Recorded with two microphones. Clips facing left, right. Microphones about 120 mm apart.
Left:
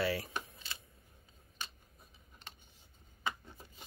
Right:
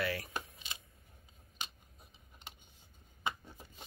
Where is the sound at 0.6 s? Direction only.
15° right (ahead or behind).